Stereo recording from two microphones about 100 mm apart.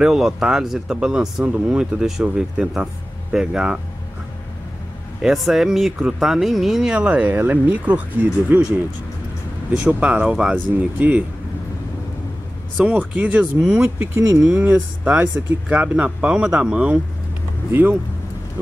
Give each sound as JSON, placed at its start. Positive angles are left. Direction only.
{"t": 0.0, "sound": "speech", "side_deg": -5}
{"t": 5.2, "sound": "speech", "side_deg": -5}
{"t": 9.7, "sound": "speech", "side_deg": -10}
{"t": 12.8, "sound": "speech", "side_deg": -15}